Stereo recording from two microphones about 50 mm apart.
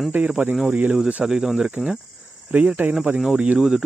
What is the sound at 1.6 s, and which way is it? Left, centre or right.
Speech, right.